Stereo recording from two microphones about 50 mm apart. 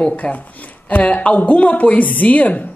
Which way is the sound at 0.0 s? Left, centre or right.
Left.